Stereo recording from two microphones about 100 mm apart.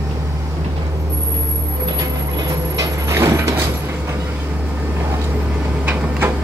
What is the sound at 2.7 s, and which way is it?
Sliding door, 30° right (ahead or behind).